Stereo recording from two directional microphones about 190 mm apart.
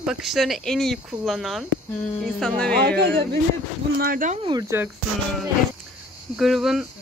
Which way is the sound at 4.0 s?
45° right (ahead or behind).